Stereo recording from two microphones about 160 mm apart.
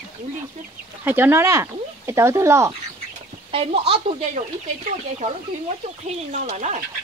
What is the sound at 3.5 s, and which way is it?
Speech, 40° right (ahead or behind).